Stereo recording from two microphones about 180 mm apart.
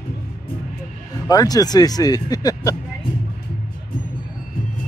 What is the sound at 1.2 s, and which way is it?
Speech, 20° left (ahead or behind).